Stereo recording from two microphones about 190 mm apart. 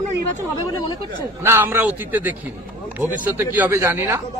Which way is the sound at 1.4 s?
10° right (ahead or behind).